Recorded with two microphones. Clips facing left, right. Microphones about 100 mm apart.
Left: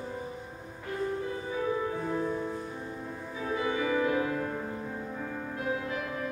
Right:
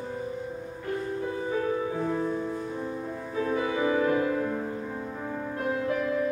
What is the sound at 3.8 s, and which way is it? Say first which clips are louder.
Music: right 4 dB; 40° right (ahead or behind).